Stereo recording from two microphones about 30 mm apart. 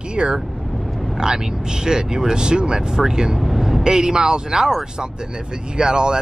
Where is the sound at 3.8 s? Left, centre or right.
Right.